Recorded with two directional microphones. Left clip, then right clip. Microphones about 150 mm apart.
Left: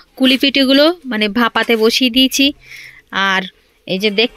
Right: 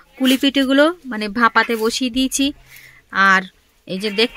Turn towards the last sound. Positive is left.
turn(degrees=10)  # may be behind; listen again after turning